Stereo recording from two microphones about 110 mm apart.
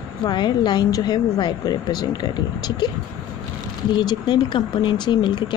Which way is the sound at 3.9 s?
45° left (ahead or behind).